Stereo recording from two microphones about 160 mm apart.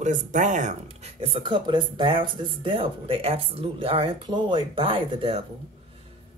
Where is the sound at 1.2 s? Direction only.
30° right (ahead or behind).